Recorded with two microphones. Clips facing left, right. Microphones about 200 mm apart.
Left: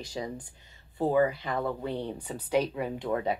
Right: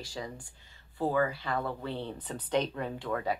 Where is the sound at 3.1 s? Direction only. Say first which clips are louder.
Left 3 dB; 20° left (ahead or behind).